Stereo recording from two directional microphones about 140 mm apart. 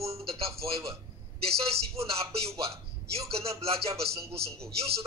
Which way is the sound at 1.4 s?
45° right (ahead or behind).